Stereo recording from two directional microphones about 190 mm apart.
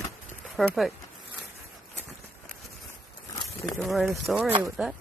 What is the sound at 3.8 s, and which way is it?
Speech, centre (ahead or behind).